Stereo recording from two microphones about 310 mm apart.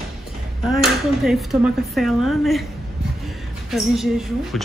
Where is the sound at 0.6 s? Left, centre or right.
Centre.